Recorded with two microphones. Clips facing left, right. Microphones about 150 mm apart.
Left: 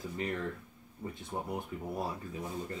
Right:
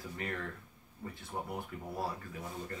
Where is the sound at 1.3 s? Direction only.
15° left (ahead or behind).